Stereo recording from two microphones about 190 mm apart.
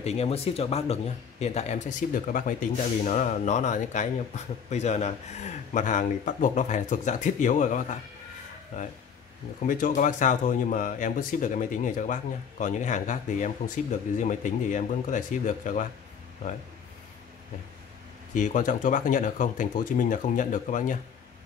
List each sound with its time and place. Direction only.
0.0 s speech: 35° left (ahead or behind)
18.3 s speech: 40° left (ahead or behind)